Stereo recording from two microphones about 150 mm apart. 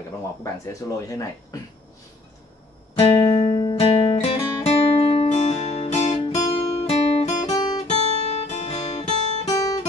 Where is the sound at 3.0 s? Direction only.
25° left (ahead or behind).